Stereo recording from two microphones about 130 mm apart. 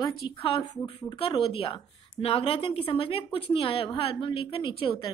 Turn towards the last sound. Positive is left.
turn(degrees=40)  # may be behind; listen again after turning